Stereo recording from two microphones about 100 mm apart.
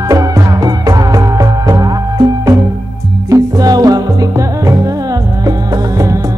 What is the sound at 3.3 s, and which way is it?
Music, 40° right (ahead or behind).